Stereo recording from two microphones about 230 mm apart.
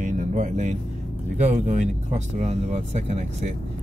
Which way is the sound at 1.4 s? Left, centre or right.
Right.